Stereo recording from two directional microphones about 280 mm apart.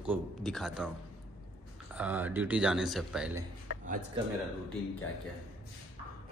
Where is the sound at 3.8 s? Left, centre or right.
Right.